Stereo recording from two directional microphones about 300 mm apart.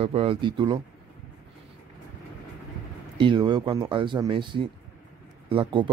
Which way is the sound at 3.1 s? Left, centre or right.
Centre.